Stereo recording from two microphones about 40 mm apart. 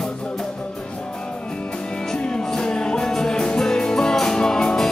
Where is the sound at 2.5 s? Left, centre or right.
Left.